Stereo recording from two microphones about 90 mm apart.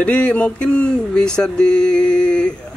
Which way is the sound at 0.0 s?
15° left (ahead or behind).